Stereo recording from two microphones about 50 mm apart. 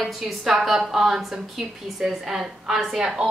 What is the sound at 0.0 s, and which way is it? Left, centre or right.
A woman's voice, centre.